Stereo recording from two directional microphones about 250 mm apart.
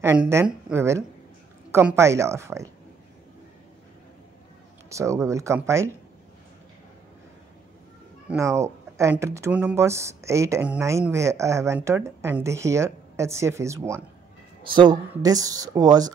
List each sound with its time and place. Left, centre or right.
0.0 s speech: centre
4.8 s speech: centre
8.3 s speech: centre